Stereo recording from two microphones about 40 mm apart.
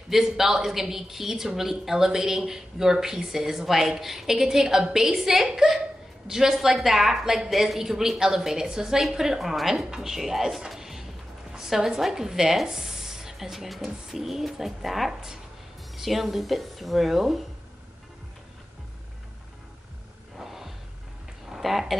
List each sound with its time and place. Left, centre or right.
0.1 s a woman's voice: centre
10.1 s speech: centre
10.7 s a sound: centre
11.5 s a woman's voice: centre
20.3 s music: centre
21.5 s a sound: centre